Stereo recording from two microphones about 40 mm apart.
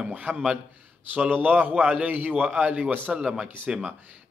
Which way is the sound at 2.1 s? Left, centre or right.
Right.